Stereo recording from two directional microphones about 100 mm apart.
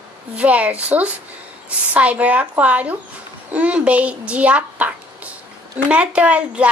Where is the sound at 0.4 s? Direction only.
15° right (ahead or behind).